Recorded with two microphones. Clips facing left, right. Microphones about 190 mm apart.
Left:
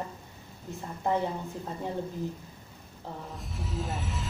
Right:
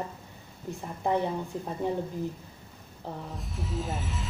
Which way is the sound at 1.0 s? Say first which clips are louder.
Right 1 dB; 15° right (ahead or behind).